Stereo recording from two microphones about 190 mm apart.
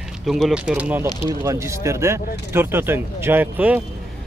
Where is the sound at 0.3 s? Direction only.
Centre (ahead or behind).